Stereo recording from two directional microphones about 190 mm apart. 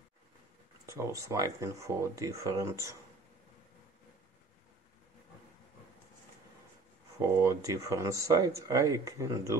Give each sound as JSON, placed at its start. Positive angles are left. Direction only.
{"t": 0.8, "sound": "speech", "side_deg": -15}
{"t": 7.2, "sound": "speech", "side_deg": -15}